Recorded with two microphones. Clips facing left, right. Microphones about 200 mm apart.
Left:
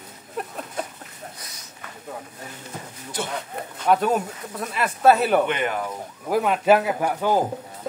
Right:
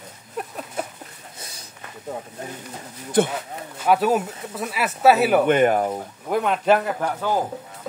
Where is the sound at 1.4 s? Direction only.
30° right (ahead or behind).